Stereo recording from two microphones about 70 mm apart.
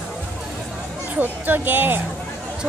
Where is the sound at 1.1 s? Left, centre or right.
Right.